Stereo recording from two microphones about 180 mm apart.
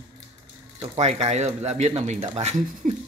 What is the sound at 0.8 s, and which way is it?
Speech, 40° right (ahead or behind).